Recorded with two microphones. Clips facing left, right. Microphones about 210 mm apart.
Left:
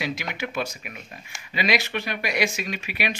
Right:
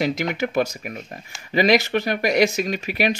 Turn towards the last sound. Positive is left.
turn(degrees=-40)  # may be behind; listen again after turning